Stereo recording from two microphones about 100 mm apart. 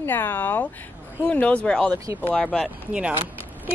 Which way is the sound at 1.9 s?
35° right (ahead or behind).